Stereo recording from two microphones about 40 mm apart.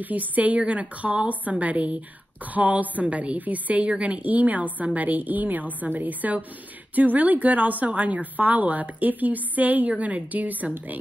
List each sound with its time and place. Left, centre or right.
0.0 s a woman's voice: right